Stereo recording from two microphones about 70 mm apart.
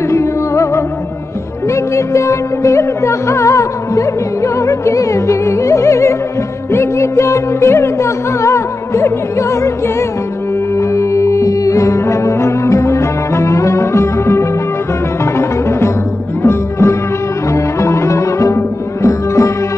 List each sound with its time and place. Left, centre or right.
0.1 s music: left
16.4 s music: left